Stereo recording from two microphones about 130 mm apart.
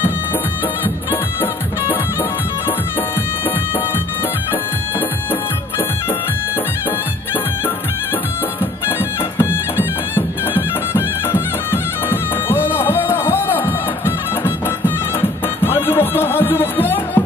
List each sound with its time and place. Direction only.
0.8 s music: 15° left (ahead or behind)
8.8 s music: 15° left (ahead or behind)